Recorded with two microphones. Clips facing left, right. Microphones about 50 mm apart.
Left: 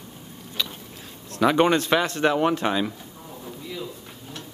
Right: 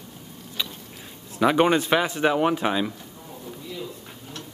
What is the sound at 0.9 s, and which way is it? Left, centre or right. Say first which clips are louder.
Speech: left 1 dB; centre.